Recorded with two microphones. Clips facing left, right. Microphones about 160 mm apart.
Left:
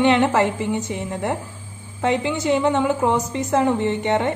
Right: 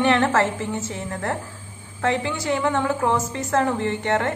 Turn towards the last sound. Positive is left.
turn(degrees=20)  # may be behind; listen again after turning